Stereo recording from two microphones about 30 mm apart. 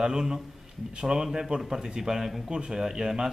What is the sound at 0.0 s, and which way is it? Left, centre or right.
A man's voice, right.